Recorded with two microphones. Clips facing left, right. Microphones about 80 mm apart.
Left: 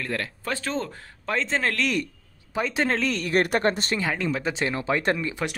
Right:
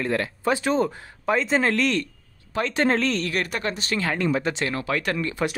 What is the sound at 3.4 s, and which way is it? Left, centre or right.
Speech, left.